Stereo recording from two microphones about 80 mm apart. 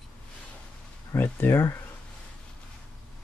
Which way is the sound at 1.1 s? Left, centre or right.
Left.